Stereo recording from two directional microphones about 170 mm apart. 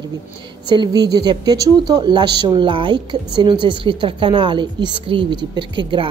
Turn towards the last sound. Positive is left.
turn(degrees=-30)  # may be behind; listen again after turning